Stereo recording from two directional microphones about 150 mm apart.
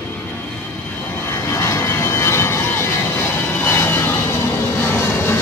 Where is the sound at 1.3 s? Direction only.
20° left (ahead or behind).